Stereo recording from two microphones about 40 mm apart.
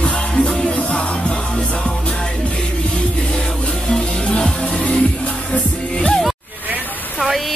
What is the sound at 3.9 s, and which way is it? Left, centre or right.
Music, left.